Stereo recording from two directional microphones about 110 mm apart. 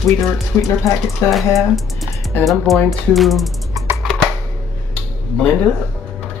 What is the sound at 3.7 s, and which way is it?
Typing, 25° right (ahead or behind).